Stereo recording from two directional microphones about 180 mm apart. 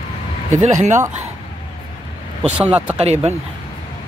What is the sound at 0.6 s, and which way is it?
Speech, 40° right (ahead or behind).